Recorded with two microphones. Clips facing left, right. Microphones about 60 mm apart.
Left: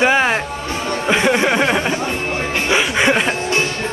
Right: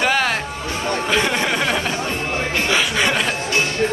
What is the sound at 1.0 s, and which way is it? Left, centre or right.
Speech, left.